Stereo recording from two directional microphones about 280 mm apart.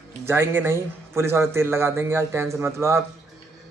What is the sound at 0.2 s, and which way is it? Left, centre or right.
Speech, centre.